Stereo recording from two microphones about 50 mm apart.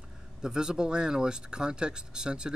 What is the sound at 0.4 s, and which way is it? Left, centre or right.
Speech, centre.